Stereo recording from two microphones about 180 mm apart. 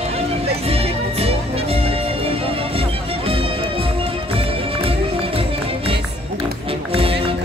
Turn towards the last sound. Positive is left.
turn(degrees=-30)  # may be behind; listen again after turning